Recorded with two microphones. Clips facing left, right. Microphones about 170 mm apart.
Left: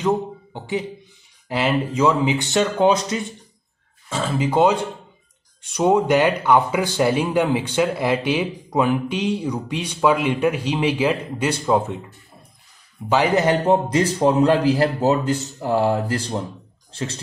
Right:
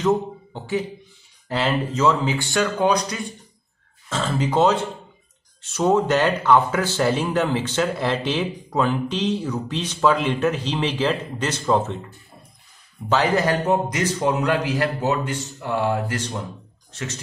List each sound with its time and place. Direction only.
0.0 s speech: 15° left (ahead or behind)
4.1 s speech: 10° left (ahead or behind)
13.1 s a man's voice: 15° left (ahead or behind)